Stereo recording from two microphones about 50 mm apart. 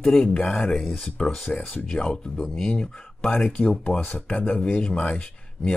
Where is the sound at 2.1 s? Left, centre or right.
Centre.